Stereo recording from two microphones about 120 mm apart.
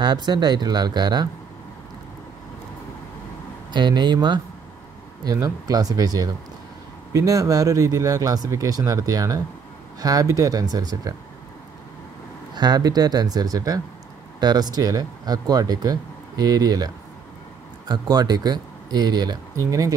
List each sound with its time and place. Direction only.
0.0 s speech: 35° right (ahead or behind)
3.7 s speech: 40° right (ahead or behind)
12.5 s speech: 35° right (ahead or behind)